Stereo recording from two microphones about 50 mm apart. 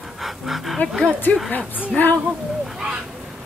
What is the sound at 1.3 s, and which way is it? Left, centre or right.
Speech, left.